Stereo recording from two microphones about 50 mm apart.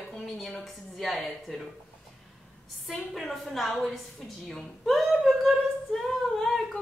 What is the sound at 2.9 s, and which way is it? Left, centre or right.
Speech, centre.